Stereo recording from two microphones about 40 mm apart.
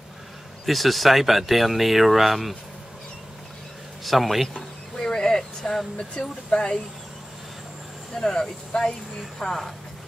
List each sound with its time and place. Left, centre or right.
0.7 s speech: centre
4.0 s speech: centre
4.9 s a sound: centre
5.9 s speech: centre
8.2 s speech: centre
9.4 s speech: centre